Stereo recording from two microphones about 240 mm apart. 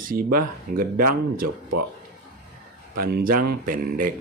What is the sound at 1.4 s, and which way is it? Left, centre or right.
Speech, right.